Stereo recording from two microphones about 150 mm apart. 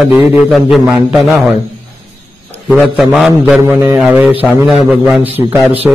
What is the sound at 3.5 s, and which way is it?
Speech, 15° right (ahead or behind).